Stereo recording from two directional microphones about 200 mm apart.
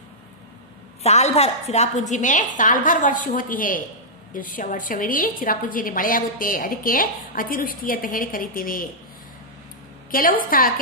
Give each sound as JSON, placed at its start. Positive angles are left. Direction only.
{"t": 1.0, "sound": "a woman's voice", "side_deg": 30}
{"t": 10.1, "sound": "a woman's voice", "side_deg": 45}